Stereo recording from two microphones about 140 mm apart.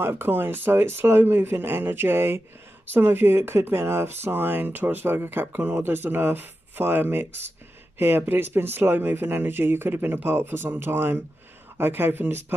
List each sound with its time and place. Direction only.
0.0 s speech: 15° right (ahead or behind)